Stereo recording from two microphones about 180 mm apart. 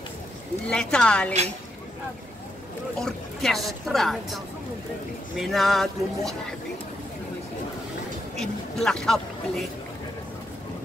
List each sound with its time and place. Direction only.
0.7 s speech: 5° left (ahead or behind)
3.0 s speech: centre (ahead or behind)
5.4 s speech: centre (ahead or behind)
8.4 s speech: 5° left (ahead or behind)